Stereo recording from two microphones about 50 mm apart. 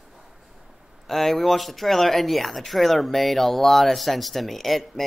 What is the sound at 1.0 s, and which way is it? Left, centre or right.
Speech, centre.